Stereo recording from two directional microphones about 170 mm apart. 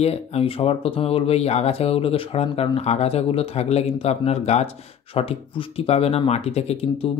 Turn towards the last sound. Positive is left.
turn(degrees=35)  # may be behind; listen again after turning